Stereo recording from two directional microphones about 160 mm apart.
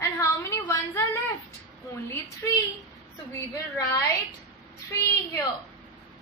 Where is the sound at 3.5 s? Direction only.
20° left (ahead or behind).